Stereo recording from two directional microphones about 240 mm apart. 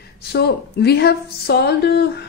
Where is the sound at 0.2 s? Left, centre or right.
Left.